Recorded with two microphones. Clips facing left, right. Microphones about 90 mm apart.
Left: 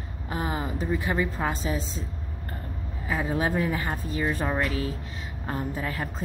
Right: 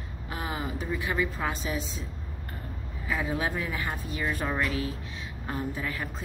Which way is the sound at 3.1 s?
30° left (ahead or behind).